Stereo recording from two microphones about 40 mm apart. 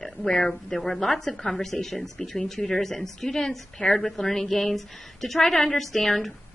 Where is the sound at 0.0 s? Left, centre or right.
Centre.